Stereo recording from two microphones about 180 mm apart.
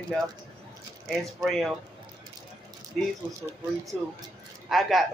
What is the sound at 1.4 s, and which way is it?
Speech, centre (ahead or behind).